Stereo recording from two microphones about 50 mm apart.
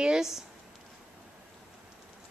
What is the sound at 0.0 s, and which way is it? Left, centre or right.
Speech, centre.